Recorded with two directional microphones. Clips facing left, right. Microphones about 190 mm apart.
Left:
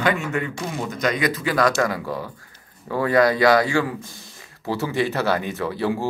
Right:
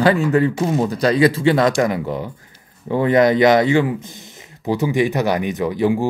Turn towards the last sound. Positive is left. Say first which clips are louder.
# right 6 dB
turn(degrees=-15)  # may be behind; listen again after turning